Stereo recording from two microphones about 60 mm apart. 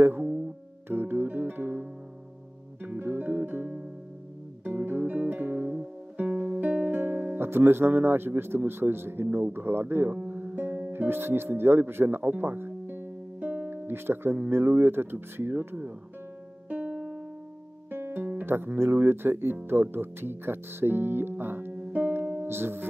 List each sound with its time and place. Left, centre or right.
0.0 s music: right
7.3 s a man's voice: right
10.1 s music: right
13.4 s speech: right
16.6 s music: right
17.9 s speech: right
22.2 s music: centre
22.5 s a man's voice: right